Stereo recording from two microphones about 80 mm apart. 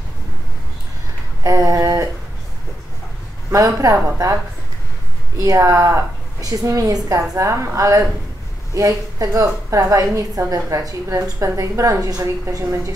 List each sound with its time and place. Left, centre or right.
1.4 s a sound: right
3.5 s a woman's voice: right
5.4 s a woman's voice: right